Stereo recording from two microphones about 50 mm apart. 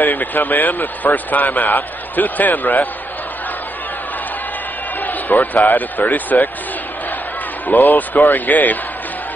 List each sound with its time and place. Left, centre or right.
0.0 s a man's voice: left
5.0 s speech: left
7.6 s a man's voice: left